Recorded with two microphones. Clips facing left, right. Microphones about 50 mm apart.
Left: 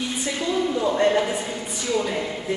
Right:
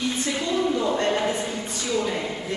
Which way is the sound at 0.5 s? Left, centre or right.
Centre.